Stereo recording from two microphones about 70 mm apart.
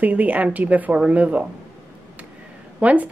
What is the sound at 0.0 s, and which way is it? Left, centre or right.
Speech, right.